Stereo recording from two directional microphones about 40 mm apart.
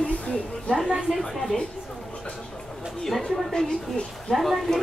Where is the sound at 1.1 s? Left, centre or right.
Centre.